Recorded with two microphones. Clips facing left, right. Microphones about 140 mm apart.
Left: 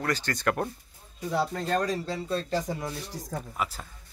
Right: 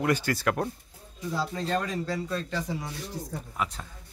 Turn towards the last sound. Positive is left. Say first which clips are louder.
# even
turn(degrees=5)  # may be behind; listen again after turning